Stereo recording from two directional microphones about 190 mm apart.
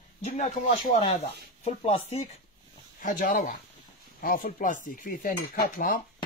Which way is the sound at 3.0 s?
50° left (ahead or behind).